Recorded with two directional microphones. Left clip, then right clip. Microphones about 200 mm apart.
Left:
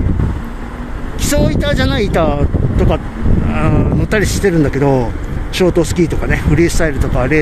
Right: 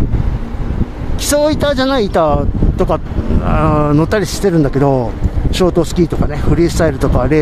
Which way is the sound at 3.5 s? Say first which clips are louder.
Right 5 dB; 20° right (ahead or behind).